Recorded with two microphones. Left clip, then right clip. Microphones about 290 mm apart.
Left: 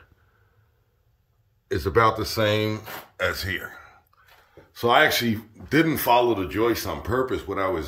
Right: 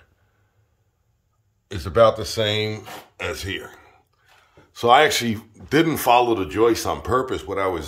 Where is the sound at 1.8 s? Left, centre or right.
Centre.